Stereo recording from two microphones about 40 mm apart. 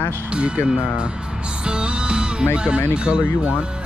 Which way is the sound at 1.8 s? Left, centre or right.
Right.